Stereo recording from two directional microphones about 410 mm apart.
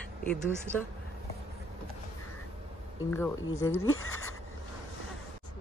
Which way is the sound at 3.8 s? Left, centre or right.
Left.